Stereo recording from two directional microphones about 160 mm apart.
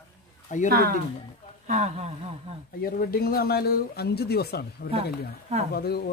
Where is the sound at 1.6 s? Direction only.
45° right (ahead or behind).